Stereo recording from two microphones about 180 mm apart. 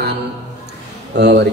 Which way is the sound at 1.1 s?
70° right (ahead or behind).